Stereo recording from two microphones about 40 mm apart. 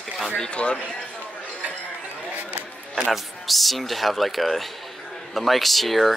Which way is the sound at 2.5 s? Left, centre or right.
Right.